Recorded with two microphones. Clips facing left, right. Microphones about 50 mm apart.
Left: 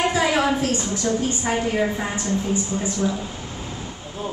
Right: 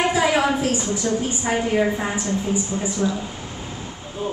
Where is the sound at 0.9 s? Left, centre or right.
Centre.